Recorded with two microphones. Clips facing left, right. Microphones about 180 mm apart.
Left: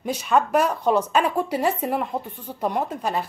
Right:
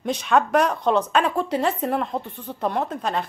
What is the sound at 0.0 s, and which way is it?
A woman's voice, 5° left (ahead or behind).